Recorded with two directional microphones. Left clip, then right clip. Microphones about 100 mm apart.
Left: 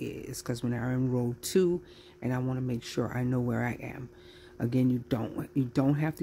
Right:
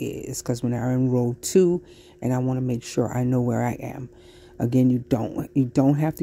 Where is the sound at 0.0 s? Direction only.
50° right (ahead or behind).